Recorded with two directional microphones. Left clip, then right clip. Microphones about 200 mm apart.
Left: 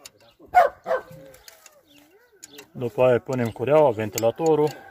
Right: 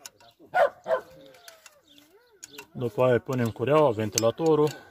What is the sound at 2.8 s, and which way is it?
Speech, 30° right (ahead or behind).